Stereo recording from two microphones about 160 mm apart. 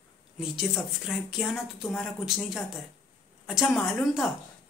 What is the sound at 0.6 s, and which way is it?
A woman's voice, centre (ahead or behind).